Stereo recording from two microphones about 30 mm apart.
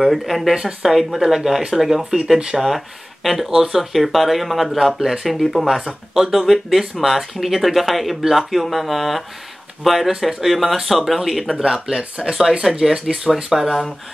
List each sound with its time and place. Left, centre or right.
0.0 s speech: centre
2.5 s speech: centre
3.4 s speech: centre
3.9 s speech: centre
12.7 s speech: right
13.0 s speech: centre